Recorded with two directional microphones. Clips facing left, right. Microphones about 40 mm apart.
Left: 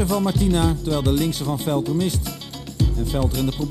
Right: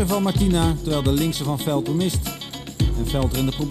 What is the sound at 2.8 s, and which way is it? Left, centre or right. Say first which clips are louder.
Music: left 1 dB; right.